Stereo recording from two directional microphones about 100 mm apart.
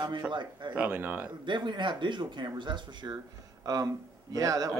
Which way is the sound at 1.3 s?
50° right (ahead or behind).